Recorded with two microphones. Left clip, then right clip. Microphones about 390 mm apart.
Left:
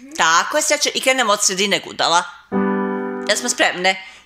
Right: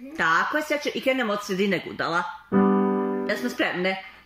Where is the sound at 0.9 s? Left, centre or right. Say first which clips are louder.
Left 7 dB; left.